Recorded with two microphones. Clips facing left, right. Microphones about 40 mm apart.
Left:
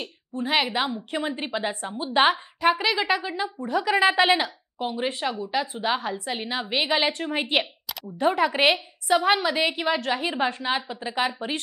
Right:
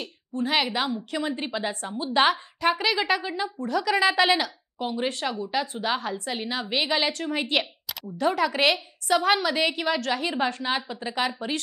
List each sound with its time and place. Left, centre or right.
0.0 s a woman's voice: centre
3.5 s speech: centre